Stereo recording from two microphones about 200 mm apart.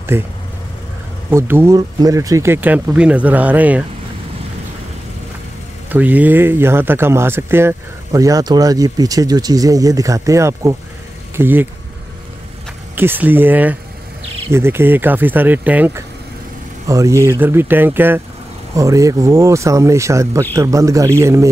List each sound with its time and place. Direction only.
0.1 s speech: 10° right (ahead or behind)
1.3 s speech: 15° right (ahead or behind)
5.9 s speech: 10° right (ahead or behind)
12.9 s speech: 10° right (ahead or behind)